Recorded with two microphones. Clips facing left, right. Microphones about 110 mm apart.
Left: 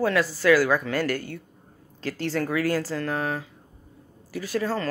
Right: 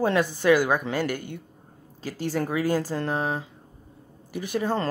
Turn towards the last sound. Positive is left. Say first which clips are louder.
# right 1 dB
turn(degrees=-20)  # may be behind; listen again after turning